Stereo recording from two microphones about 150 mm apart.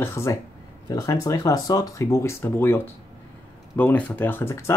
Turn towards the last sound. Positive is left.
turn(degrees=15)  # may be behind; listen again after turning